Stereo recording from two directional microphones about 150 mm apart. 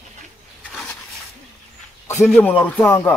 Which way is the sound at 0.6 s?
5° left (ahead or behind).